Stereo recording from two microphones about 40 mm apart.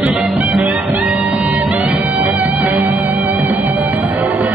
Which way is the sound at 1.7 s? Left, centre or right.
Right.